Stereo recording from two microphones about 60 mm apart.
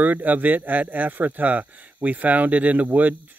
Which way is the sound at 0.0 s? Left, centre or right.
Right.